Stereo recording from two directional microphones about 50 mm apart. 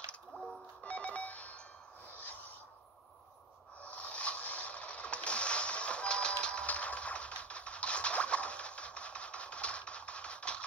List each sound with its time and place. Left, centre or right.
0.3 s music: left
0.8 s telephone dialing: left
3.9 s a sound: left